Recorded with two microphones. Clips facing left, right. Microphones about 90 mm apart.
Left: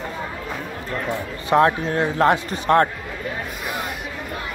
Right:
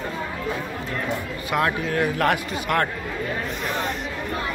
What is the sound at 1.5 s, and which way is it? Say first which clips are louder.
A man's voice: left 6 dB; 30° left (ahead or behind).